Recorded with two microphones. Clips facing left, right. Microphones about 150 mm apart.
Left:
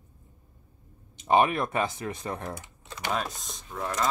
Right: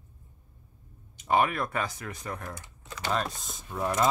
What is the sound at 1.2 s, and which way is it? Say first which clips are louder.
Speech: left 3 dB; 20° left (ahead or behind).